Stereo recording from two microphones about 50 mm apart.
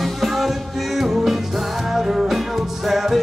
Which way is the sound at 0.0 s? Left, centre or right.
Centre.